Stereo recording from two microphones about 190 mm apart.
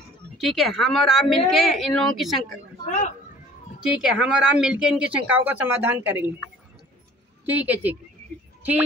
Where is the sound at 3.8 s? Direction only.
5° right (ahead or behind).